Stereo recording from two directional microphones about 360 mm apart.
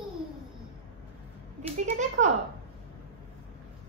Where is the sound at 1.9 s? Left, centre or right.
Centre.